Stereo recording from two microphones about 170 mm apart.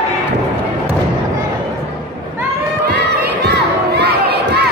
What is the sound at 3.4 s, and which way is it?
Crowd, 80° right.